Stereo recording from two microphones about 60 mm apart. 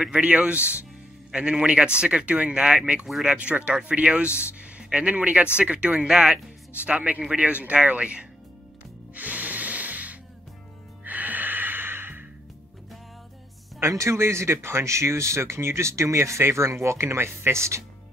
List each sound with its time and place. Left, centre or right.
0.0 s a man's voice: right
6.8 s speech: right
9.1 s music: right
13.7 s speech: right